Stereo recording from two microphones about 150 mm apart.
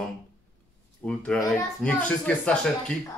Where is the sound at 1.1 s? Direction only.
5° left (ahead or behind).